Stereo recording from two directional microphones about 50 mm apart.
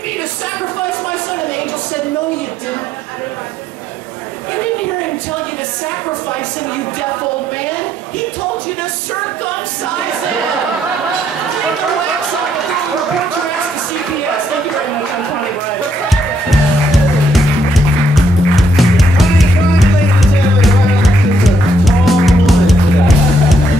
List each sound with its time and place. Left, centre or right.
17.3 s music: centre